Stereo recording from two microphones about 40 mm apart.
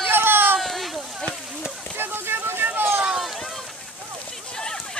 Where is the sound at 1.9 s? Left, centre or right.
Right.